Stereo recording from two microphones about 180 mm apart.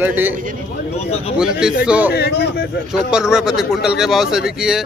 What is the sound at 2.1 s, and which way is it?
Speech, 65° left (ahead or behind).